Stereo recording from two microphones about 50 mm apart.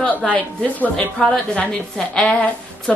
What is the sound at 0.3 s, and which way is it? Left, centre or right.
A woman's voice, left.